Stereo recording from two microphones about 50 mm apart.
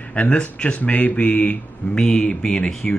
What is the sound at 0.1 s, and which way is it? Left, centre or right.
Speech, left.